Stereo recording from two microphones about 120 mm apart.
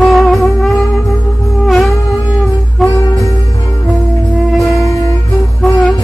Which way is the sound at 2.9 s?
25° left (ahead or behind).